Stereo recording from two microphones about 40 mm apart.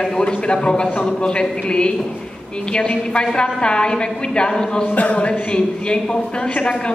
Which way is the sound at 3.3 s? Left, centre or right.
Left.